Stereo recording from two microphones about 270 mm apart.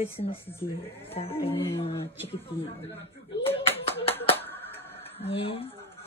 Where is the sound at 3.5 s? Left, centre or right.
Left.